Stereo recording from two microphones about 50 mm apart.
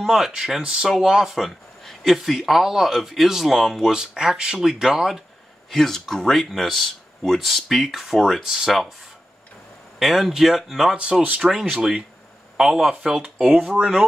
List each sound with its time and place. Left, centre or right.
0.0 s speech: centre
1.3 s a sound: centre
2.2 s speech: centre
3.9 s speech: centre
5.7 s speech: centre
9.9 s speech: centre
11.0 s speech: right